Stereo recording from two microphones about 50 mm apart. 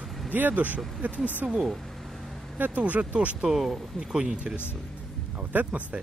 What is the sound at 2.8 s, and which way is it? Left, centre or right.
Speech, right.